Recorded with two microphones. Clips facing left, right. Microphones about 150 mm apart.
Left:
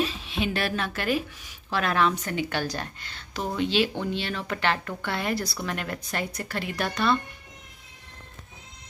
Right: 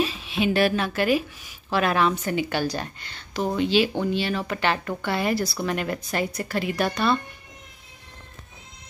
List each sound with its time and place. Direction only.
0.0 s a woman's voice: 5° right (ahead or behind)